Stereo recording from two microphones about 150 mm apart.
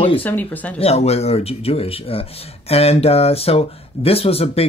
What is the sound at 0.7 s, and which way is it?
Speech, 45° left (ahead or behind).